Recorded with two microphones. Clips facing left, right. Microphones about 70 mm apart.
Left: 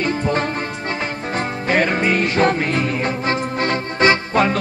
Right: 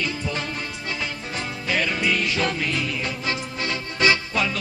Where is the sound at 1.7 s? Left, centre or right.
Left.